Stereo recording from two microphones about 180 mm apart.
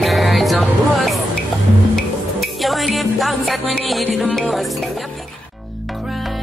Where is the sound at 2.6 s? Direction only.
Centre (ahead or behind).